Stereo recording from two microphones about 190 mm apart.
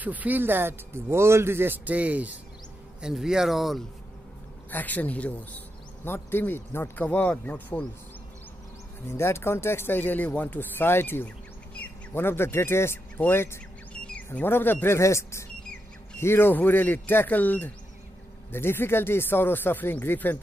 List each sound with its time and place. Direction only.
0.0 s speech: 10° right (ahead or behind); by 7.8 s 10° left (ahead or behind)
9.0 s speech: 15° left (ahead or behind)